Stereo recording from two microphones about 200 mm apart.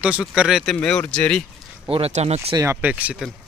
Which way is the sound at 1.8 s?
30° right (ahead or behind).